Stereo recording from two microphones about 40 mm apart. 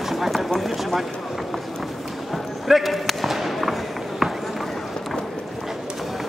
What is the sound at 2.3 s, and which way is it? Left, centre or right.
Basketball bounce, centre.